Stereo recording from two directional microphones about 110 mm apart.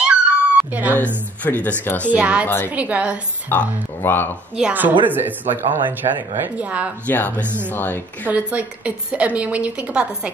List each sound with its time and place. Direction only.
0.1 s dog: 15° right (ahead or behind)
1.4 s speech: 15° left (ahead or behind)
2.0 s a woman's voice: 10° right (ahead or behind)
2.4 s speech: 15° left (ahead or behind)
2.7 s a woman's voice: 15° right (ahead or behind)
3.4 s speech: 20° left (ahead or behind)
4.6 s a woman's voice: 10° right (ahead or behind)
6.0 s speech: 50° right (ahead or behind)
6.4 s a woman's voice: 15° right (ahead or behind)
7.1 s speech: 15° left (ahead or behind)
7.4 s speech: 20° right (ahead or behind)
7.7 s speech: 15° left (ahead or behind)
8.3 s a woman's voice: 15° right (ahead or behind)